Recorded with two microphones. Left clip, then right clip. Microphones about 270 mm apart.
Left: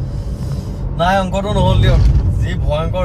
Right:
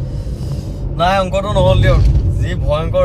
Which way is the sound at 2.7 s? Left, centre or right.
Right.